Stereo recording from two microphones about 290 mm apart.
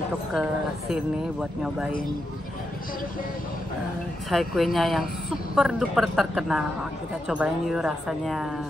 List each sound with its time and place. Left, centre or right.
0.3 s speech: centre
4.3 s speech: centre